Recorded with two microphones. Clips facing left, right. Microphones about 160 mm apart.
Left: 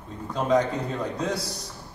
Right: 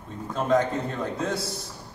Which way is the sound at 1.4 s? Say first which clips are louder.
Right 1 dB; 25° right (ahead or behind).